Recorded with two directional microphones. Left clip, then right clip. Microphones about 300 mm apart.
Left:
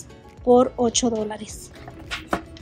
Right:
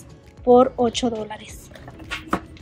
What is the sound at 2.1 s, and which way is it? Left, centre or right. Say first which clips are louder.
Chopping: right 1 dB; centre.